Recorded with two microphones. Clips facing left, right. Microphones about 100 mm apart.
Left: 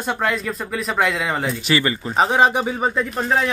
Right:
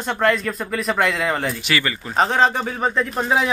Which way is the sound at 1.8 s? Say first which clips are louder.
Left 3 dB; 25° left (ahead or behind).